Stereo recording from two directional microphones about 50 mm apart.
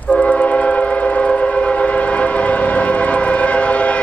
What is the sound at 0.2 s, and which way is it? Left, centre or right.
Train, centre.